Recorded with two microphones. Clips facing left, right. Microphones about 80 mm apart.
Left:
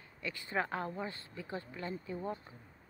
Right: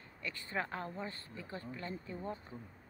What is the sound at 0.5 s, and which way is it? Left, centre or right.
Speech, left.